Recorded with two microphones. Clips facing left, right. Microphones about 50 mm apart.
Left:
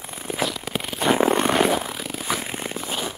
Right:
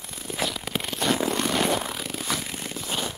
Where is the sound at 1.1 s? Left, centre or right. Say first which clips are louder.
Left 6 dB; left.